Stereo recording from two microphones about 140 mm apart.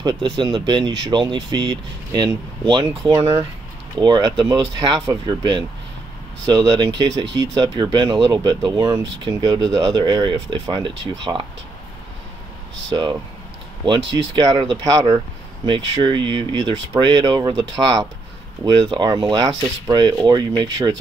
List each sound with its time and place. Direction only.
0.0 s speech: 35° right (ahead or behind)
4.0 s speech: 30° right (ahead or behind)
13.8 s speech: 35° right (ahead or behind)